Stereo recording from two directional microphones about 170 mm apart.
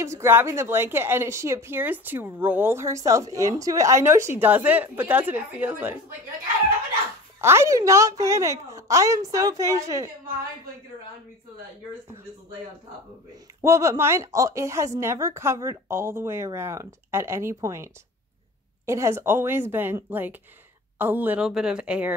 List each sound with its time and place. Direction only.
0.0 s a woman's voice: 15° right (ahead or behind)
7.3 s a woman's voice: 15° right (ahead or behind)
13.6 s a woman's voice: 15° right (ahead or behind)
18.9 s a woman's voice: 15° right (ahead or behind)